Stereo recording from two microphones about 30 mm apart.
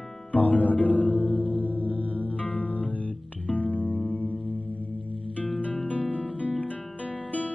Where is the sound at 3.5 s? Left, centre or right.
Left.